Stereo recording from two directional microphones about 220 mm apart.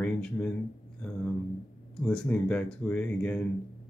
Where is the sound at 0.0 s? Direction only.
5° left (ahead or behind).